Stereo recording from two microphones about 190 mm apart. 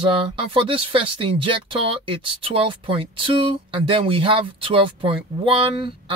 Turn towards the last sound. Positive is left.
turn(degrees=-30)  # may be behind; listen again after turning